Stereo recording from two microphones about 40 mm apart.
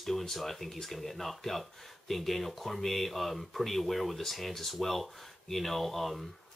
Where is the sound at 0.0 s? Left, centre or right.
Centre.